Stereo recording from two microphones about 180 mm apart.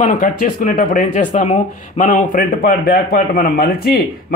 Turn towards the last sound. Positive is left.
turn(degrees=60)  # may be behind; listen again after turning